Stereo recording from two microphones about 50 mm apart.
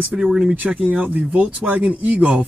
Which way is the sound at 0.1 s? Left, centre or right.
Centre.